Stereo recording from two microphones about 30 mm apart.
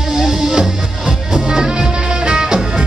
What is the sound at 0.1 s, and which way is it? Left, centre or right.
Music, centre.